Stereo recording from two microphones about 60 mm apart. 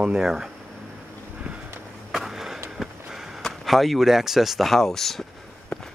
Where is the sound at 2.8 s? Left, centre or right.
Centre.